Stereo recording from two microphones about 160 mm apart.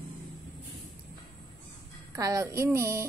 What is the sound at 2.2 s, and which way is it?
Speech, 20° right (ahead or behind).